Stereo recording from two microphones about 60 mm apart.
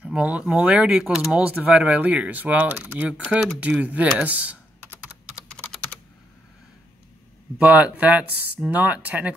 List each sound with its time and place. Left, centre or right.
0.0 s speech: right
1.6 s speech: right
3.0 s speech: centre
7.5 s speech: right